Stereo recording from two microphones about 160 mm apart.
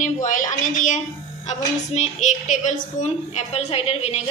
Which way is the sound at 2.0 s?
50° left (ahead or behind).